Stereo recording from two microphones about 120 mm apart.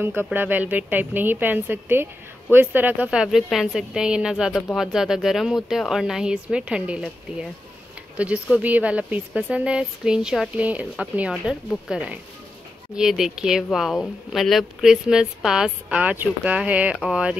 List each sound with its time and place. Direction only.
0.0 s speech: 15° right (ahead or behind)